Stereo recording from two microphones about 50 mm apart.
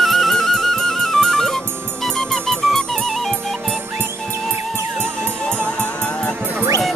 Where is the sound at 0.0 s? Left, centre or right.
Centre.